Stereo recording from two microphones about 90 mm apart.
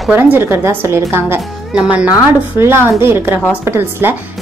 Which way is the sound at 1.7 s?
15° right (ahead or behind).